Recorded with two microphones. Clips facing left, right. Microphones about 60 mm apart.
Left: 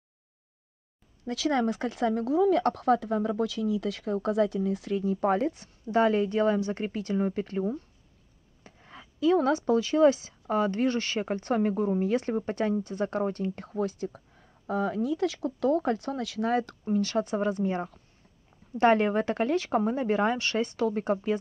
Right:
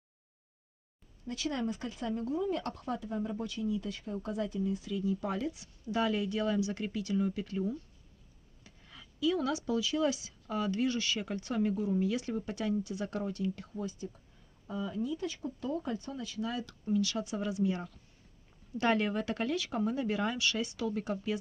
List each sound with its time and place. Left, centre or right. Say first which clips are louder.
1.2 s speech: left 8 dB; left
13.7 s speech: left 9 dB; left
16.4 s speech: left 9 dB; left